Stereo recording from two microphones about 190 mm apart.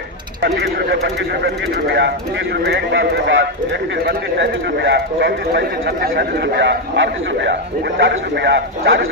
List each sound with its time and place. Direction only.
0.4 s a man's voice: 60° right (ahead or behind); by 9.0 s 75° right (ahead or behind)